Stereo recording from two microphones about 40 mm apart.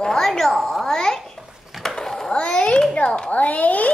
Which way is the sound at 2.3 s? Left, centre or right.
Left.